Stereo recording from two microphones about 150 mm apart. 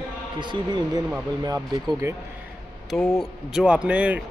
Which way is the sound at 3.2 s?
5° right (ahead or behind).